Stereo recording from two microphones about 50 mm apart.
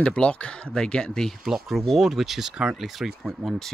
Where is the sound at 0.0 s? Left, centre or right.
Left.